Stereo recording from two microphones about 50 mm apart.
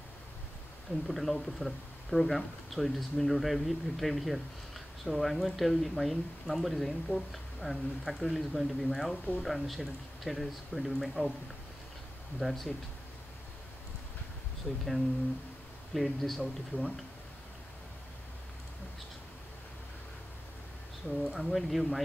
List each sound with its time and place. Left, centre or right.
1.0 s speech: centre
9.1 s speech: left
9.4 s speech: centre
12.4 s speech: centre
14.7 s speech: left
15.9 s speech: centre
21.4 s speech: centre